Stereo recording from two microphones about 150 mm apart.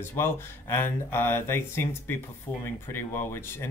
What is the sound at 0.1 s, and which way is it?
Speech, 15° left (ahead or behind).